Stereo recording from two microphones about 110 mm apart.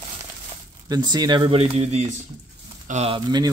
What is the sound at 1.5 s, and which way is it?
Speech, 60° right (ahead or behind).